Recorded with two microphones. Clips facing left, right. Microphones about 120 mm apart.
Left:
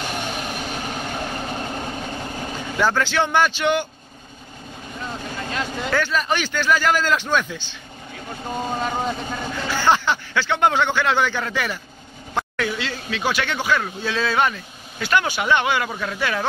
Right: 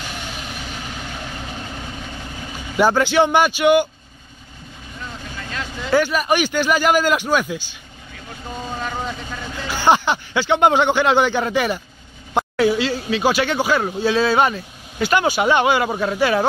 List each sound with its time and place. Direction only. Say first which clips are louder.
0.0 s vehicle: left 4 dB; 50° left (ahead or behind)
2.8 s speech: right 5 dB; 15° right (ahead or behind)
5.1 s vehicle: left 3 dB; 35° left (ahead or behind)
5.9 s speech: right 6 dB; 15° right (ahead or behind)
8.7 s speech: left 1 dB; 30° left (ahead or behind)
9.7 s speech: right 3 dB; 15° right (ahead or behind)
12.5 s a sound: right 11 dB; 30° right (ahead or behind)
13.6 s speech: right 4 dB; 30° right (ahead or behind)